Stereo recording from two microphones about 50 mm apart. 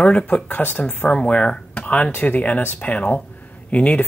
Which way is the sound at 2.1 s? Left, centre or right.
Left.